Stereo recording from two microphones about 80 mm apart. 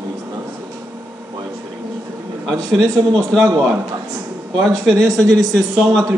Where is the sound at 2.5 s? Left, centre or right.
Right.